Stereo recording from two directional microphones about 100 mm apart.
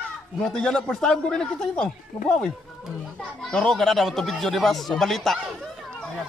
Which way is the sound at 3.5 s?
5° left (ahead or behind).